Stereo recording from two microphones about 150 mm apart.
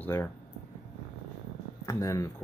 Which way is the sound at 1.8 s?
20° left (ahead or behind).